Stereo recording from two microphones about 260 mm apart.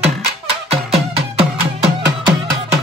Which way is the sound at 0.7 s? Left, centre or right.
Right.